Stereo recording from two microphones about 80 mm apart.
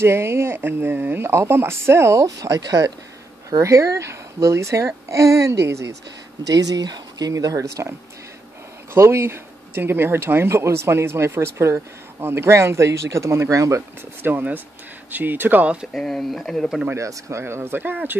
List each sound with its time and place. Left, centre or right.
0.0 s speech: right
6.5 s speech: right
8.9 s speech: right
14.2 s speech: right
15.9 s speech: centre
16.9 s speech: right